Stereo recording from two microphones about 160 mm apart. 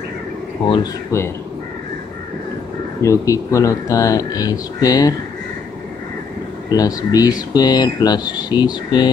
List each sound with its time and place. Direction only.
1.1 s speech: 15° left (ahead or behind)
3.0 s speech: 20° left (ahead or behind)
6.7 s speech: 25° left (ahead or behind)